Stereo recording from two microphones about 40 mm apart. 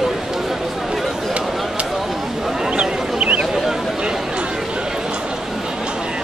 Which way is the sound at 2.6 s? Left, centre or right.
Right.